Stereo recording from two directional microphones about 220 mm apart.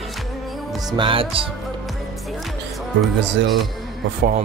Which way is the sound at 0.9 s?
25° right (ahead or behind).